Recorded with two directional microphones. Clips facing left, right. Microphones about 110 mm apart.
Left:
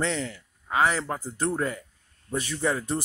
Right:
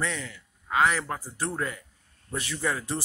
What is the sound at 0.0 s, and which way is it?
A man's voice, 25° left (ahead or behind).